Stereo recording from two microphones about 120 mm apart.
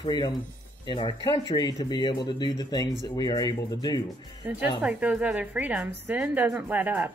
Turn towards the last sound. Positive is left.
turn(degrees=-15)  # may be behind; listen again after turning